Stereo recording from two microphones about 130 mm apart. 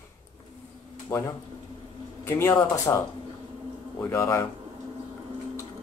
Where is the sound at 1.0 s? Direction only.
20° left (ahead or behind).